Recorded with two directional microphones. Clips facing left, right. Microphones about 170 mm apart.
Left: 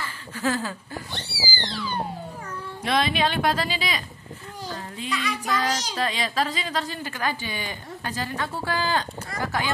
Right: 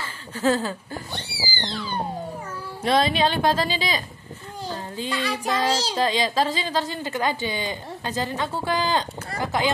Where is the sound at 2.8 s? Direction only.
30° right (ahead or behind).